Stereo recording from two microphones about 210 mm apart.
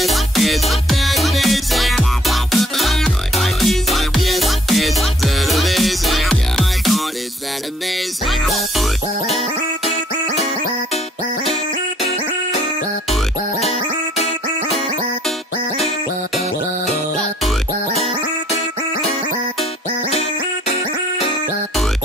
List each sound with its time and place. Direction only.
0.0 s music: centre (ahead or behind)
8.3 s music: centre (ahead or behind)
12.0 s music: 30° left (ahead or behind)
20.1 s music: 30° left (ahead or behind)